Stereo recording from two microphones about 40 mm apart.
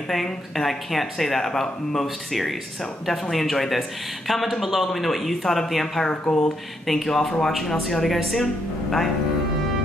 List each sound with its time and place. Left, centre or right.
0.1 s speech: centre
6.3 s speech: left
6.9 s speech: centre